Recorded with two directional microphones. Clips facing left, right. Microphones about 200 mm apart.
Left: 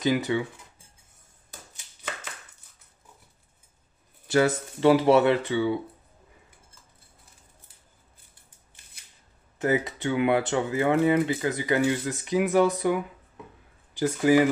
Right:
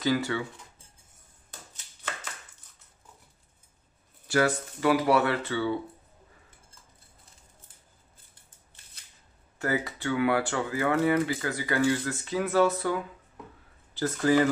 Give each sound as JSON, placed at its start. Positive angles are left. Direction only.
{"t": 0.0, "sound": "speech", "side_deg": 20}
{"t": 4.3, "sound": "speech", "side_deg": 25}
{"t": 9.6, "sound": "speech", "side_deg": 20}